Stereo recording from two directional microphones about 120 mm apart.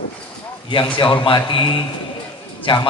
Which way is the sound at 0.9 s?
45° left (ahead or behind).